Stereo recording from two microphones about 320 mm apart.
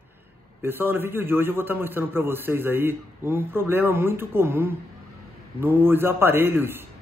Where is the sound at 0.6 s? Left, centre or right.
Centre.